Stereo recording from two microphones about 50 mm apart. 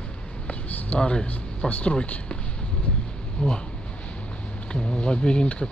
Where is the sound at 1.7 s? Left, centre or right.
Left.